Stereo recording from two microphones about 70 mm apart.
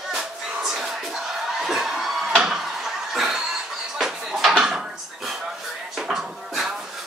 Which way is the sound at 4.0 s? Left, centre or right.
Centre.